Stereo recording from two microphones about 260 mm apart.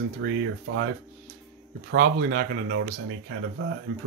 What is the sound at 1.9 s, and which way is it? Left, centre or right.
Speech, right.